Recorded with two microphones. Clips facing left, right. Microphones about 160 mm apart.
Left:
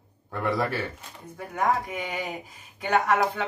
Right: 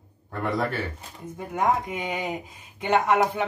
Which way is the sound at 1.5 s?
20° right (ahead or behind).